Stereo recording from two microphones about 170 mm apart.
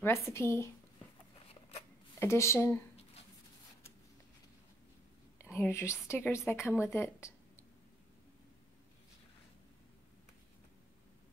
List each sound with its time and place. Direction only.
0.0 s a woman's voice: 15° left (ahead or behind)
2.1 s a woman's voice: 15° left (ahead or behind)
5.7 s a woman's voice: 15° left (ahead or behind)
6.7 s a woman's voice: 5° right (ahead or behind)
7.0 s speech: 15° left (ahead or behind)